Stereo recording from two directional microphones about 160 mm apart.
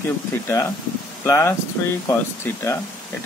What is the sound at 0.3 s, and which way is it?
Speech, 15° left (ahead or behind).